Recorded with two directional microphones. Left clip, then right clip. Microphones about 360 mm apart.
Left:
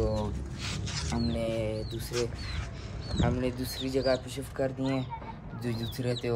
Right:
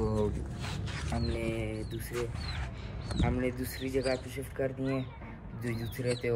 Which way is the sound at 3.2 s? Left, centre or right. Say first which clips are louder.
Left 2 dB; centre.